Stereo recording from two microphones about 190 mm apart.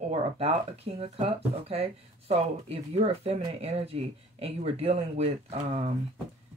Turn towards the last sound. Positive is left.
turn(degrees=-35)  # may be behind; listen again after turning